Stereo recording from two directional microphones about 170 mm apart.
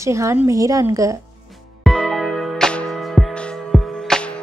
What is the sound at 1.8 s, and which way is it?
Music, centre (ahead or behind).